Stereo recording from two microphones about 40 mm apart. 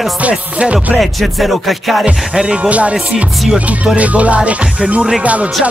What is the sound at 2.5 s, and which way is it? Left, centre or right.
Music, right.